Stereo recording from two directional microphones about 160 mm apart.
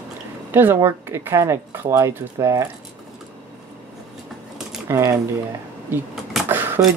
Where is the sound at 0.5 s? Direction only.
15° right (ahead or behind).